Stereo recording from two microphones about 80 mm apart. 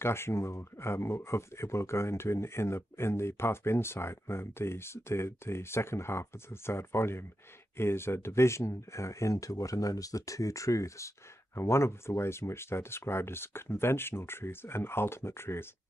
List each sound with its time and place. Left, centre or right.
0.0 s speech: left